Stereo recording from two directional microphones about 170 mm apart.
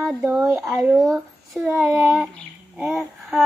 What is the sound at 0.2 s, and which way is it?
Child singing, 15° right (ahead or behind).